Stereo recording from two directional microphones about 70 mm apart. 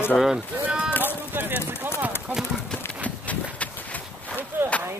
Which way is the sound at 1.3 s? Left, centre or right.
Right.